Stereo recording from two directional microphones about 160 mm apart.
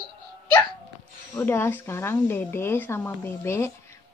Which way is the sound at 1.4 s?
15° left (ahead or behind).